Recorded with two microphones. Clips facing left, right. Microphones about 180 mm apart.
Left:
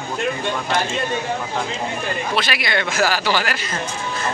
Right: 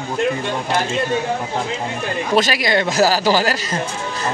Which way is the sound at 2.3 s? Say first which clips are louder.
Right 8 dB; 40° right (ahead or behind).